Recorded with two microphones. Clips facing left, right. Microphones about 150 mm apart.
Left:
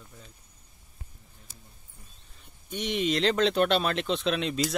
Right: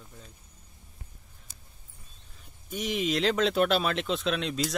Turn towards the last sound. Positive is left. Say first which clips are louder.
# left 2 dB
turn(degrees=0)  # may be behind; listen again after turning